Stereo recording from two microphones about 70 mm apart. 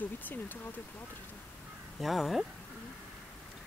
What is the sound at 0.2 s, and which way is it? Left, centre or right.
Speech, left.